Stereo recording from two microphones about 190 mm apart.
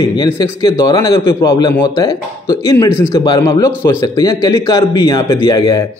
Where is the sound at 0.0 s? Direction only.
25° left (ahead or behind).